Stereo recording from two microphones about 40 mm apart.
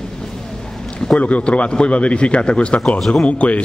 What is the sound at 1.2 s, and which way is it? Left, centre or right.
A man's voice, left.